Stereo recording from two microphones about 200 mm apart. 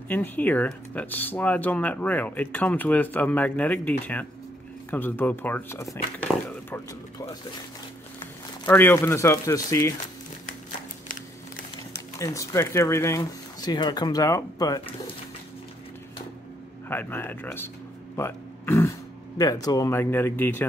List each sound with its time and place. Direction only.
0.1 s speech: 10° left (ahead or behind)
6.1 s a sound: 10° left (ahead or behind)
8.6 s speech: 10° left (ahead or behind)
11.9 s speech: 15° left (ahead or behind)
16.9 s speech: 10° left (ahead or behind)